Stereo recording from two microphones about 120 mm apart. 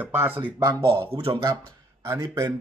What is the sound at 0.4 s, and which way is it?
Speech, 35° right (ahead or behind).